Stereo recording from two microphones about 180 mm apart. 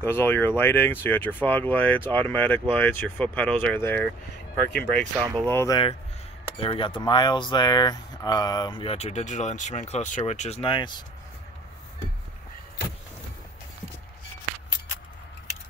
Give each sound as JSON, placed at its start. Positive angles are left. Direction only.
{"t": 0.0, "sound": "speech", "side_deg": 10}
{"t": 5.2, "sound": "speech", "side_deg": -20}
{"t": 5.5, "sound": "speech", "side_deg": 15}
{"t": 6.6, "sound": "speech", "side_deg": 30}